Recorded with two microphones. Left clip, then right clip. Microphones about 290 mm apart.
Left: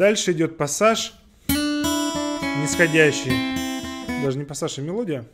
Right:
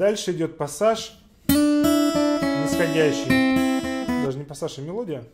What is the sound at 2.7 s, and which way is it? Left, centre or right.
Speech, left.